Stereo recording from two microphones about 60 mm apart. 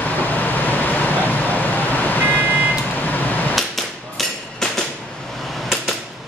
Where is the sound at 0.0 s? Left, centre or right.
Left.